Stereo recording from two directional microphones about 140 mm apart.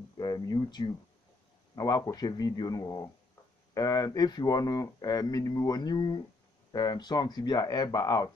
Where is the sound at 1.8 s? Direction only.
25° left (ahead or behind).